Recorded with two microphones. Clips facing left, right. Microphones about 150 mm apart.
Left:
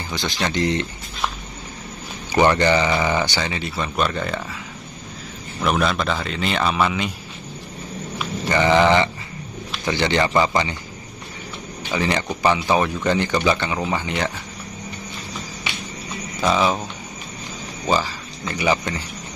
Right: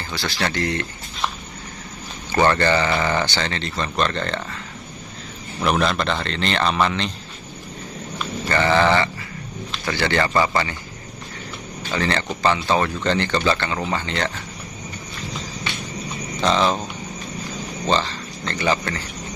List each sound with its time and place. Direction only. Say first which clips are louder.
0.1 s speech: left 1 dB; 20° left (ahead or behind)
2.3 s speech: left 1 dB; 15° left (ahead or behind)
5.6 s a man's voice: even; centre (ahead or behind)
8.5 s speech: left 2 dB; 15° left (ahead or behind)
11.8 s speech: left 1 dB; 15° left (ahead or behind)
16.3 s speech: even; 5° left (ahead or behind)
17.8 s speech: even; 10° left (ahead or behind)